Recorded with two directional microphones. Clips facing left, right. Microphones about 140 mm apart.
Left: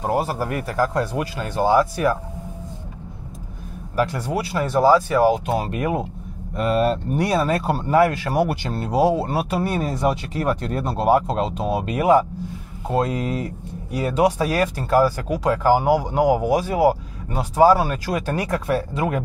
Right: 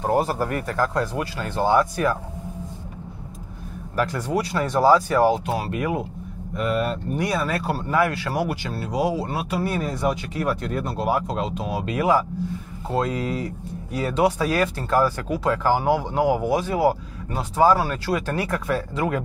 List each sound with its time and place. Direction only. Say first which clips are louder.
0.0 s speech: right 1 dB; 5° left (ahead or behind)
3.9 s speech: left 3 dB; 20° left (ahead or behind)
4.2 s speech: even; 10° left (ahead or behind)
5.8 s speech: left 2 dB; 25° left (ahead or behind)